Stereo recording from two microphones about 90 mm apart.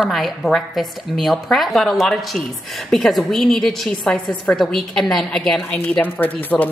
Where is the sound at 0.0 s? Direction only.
Centre (ahead or behind).